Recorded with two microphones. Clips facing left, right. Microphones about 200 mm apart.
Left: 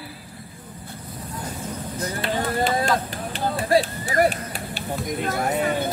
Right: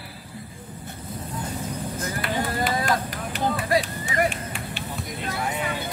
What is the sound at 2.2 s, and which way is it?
Speech, 25° left (ahead or behind).